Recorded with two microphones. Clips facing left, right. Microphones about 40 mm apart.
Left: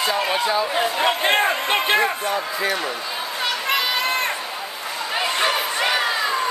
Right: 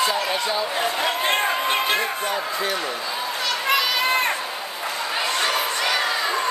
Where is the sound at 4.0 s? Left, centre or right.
Centre.